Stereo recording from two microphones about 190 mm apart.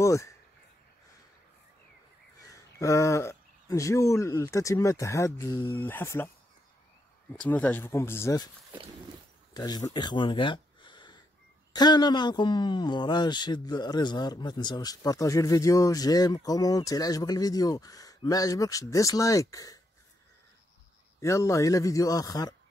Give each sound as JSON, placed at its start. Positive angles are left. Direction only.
{"t": 0.0, "sound": "a sound", "side_deg": 15}
{"t": 2.4, "sound": "a man's voice", "side_deg": 15}
{"t": 7.3, "sound": "a man's voice", "side_deg": 10}
{"t": 9.5, "sound": "speech", "side_deg": 20}
{"t": 9.9, "sound": "a sound", "side_deg": 25}
{"t": 11.7, "sound": "a man's voice", "side_deg": 20}
{"t": 21.2, "sound": "a man's voice", "side_deg": 15}